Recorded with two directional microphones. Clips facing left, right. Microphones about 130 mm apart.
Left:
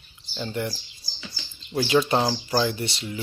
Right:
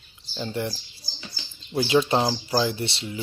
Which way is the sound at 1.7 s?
20° right (ahead or behind).